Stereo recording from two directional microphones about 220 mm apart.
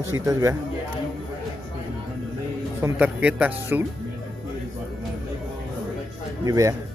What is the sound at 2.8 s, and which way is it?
Speech, 5° right (ahead or behind).